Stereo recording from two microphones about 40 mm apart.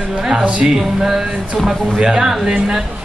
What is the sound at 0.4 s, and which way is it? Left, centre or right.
Speech, right.